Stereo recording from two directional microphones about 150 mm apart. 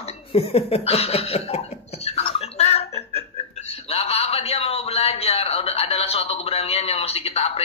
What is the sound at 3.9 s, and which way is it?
Speech, 45° left (ahead or behind).